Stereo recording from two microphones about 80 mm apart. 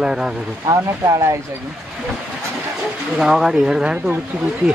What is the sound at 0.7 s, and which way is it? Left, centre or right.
Speech, right.